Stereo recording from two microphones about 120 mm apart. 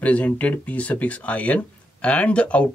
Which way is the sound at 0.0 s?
10° left (ahead or behind).